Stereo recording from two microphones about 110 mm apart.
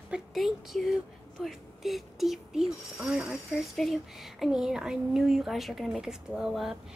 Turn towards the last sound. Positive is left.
turn(degrees=-5)  # may be behind; listen again after turning